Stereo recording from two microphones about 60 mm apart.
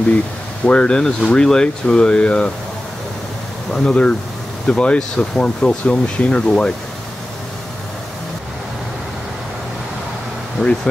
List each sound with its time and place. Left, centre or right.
0.7 s speech: centre
3.7 s speech: centre